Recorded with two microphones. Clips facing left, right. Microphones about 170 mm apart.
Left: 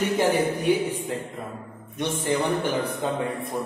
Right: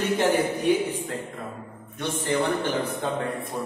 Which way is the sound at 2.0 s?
15° left (ahead or behind).